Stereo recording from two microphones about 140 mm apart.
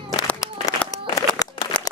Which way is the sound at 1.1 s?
25° left (ahead or behind).